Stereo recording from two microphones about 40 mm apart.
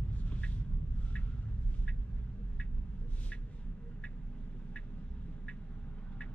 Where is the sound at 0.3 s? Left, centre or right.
Left.